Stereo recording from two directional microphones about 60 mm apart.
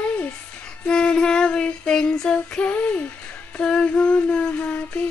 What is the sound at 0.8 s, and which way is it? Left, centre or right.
Female singing, centre.